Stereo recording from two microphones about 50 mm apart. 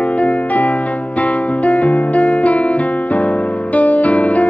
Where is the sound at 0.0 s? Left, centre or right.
Left.